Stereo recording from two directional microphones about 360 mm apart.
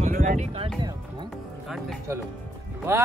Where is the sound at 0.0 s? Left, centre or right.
Right.